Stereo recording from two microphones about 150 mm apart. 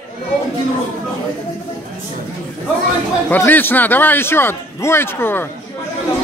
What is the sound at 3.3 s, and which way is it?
Speech, 15° left (ahead or behind).